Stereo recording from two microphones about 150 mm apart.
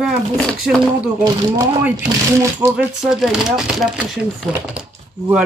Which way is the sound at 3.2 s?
Centre (ahead or behind).